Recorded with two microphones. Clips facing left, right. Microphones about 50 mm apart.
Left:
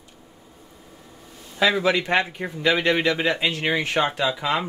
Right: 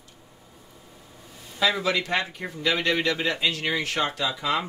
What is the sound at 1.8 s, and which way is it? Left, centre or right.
Speech, left.